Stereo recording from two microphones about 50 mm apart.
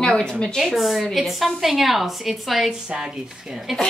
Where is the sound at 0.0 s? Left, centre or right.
Centre.